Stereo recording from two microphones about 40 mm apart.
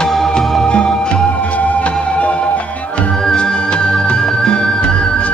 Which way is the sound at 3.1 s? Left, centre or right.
Centre.